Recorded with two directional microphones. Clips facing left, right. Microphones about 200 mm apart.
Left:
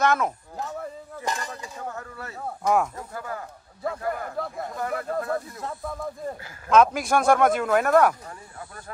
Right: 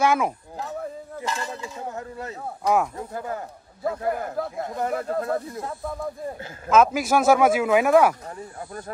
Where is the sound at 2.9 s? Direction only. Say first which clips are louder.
Right 4 dB; 25° right (ahead or behind).